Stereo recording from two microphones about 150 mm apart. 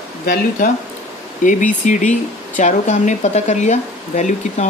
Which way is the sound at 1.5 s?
55° left (ahead or behind).